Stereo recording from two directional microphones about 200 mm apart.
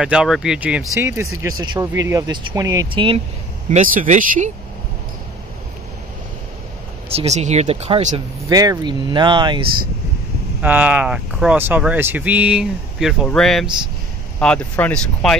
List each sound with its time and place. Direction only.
0.0 s speech: 5° right (ahead or behind); by 3.2 s 25° right (ahead or behind)
3.7 s speech: 45° right (ahead or behind)
7.1 s speech: 30° right (ahead or behind)
8.5 s speech: 20° right (ahead or behind)
10.6 s speech: 10° right (ahead or behind)